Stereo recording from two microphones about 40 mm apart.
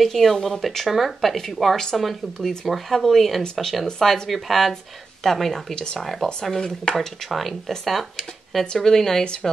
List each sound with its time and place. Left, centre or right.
0.0 s speech: centre; by 7.1 s left
7.2 s speech: centre